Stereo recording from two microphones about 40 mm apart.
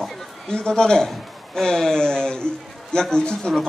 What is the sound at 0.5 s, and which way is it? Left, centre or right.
A man's voice, left.